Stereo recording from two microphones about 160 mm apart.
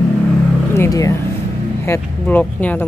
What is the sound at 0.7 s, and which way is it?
Speech, 20° left (ahead or behind).